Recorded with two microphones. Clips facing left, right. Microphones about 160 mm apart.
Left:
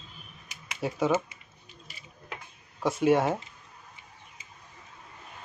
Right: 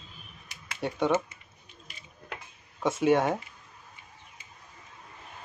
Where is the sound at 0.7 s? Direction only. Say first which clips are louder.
Even; centre (ahead or behind).